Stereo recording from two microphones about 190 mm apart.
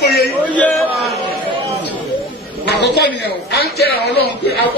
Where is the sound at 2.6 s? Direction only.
60° left (ahead or behind).